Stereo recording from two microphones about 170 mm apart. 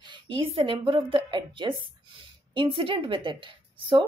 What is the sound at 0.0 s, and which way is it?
A woman's voice, 25° right (ahead or behind).